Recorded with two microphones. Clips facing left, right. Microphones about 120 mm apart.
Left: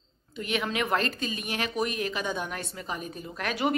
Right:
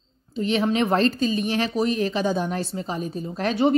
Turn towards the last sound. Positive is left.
turn(degrees=-30)  # may be behind; listen again after turning